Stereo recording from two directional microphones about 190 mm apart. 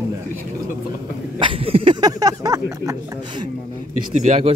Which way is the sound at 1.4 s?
30° right (ahead or behind).